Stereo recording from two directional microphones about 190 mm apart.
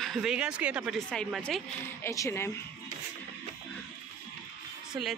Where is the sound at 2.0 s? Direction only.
15° left (ahead or behind).